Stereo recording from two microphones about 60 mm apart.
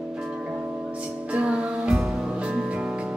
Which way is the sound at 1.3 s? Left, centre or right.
Centre.